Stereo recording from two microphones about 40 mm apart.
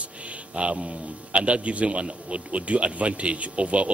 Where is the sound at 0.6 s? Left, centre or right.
Right.